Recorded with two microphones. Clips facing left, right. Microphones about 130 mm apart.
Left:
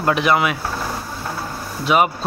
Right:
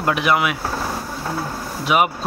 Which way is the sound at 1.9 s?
10° right (ahead or behind).